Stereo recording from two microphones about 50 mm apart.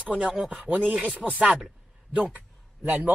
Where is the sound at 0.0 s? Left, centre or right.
Right.